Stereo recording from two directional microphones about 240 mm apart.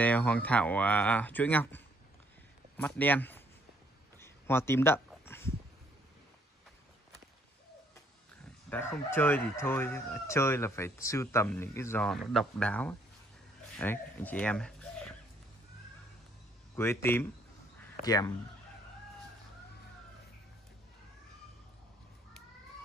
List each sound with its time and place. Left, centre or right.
0.0 s speech: centre
2.8 s speech: centre
4.2 s a sound: centre
8.6 s speech: centre
16.7 s speech: centre